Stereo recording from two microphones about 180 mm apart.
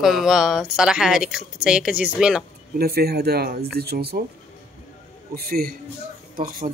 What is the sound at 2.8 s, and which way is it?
A man's voice, 60° right (ahead or behind).